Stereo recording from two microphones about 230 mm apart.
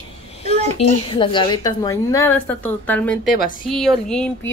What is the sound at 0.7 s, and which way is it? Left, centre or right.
A woman's voice, left.